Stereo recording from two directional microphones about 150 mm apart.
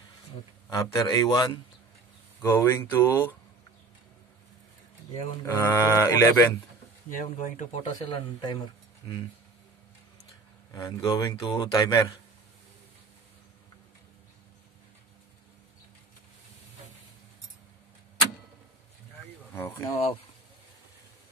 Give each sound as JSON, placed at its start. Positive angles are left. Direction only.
{"t": 0.7, "sound": "a man's voice", "side_deg": 20}
{"t": 2.4, "sound": "a sound", "side_deg": 15}
{"t": 5.5, "sound": "a sound", "side_deg": 15}
{"t": 7.1, "sound": "speech", "side_deg": 60}
{"t": 7.8, "sound": "speech", "side_deg": 30}
{"t": 10.7, "sound": "a man's voice", "side_deg": 25}
{"t": 19.5, "sound": "speech", "side_deg": 15}
{"t": 19.9, "sound": "speech", "side_deg": 40}